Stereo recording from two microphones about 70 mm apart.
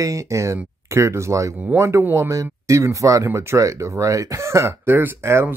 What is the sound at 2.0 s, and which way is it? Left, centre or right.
Speech, right.